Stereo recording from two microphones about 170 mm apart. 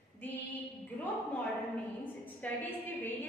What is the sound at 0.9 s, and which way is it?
A man's voice, 10° left (ahead or behind).